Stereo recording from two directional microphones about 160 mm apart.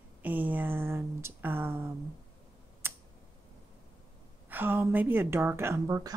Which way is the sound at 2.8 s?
15° right (ahead or behind).